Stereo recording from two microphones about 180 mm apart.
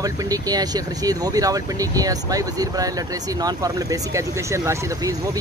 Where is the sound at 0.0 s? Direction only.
20° right (ahead or behind).